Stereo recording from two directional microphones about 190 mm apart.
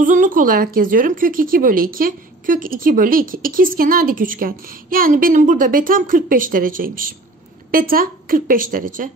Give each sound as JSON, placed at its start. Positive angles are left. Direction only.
{"t": 0.0, "sound": "a woman's voice", "side_deg": -45}